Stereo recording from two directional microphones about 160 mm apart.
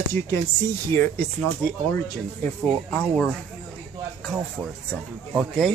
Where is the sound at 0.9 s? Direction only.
15° left (ahead or behind).